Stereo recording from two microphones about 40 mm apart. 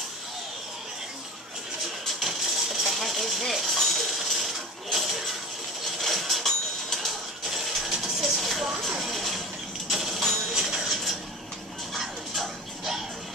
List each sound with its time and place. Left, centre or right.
2.0 s a sound: centre
7.4 s vehicle: centre
8.0 s music: centre
8.9 s a sound: centre
10.5 s music: centre
10.9 s vehicle: centre
11.9 s dog: centre